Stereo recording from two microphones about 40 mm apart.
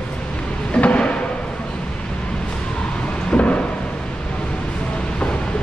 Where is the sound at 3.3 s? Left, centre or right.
Left.